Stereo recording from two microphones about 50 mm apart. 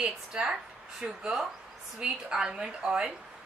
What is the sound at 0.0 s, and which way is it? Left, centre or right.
Speech, centre.